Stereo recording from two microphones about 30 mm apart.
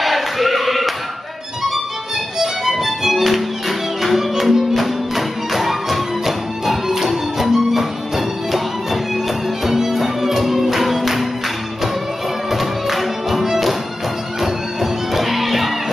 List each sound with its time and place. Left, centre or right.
0.0 s music: centre
2.3 s music: centre
12.4 s music: centre